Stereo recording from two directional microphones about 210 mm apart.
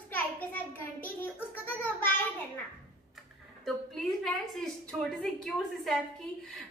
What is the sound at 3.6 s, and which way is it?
A woman's voice, centre (ahead or behind).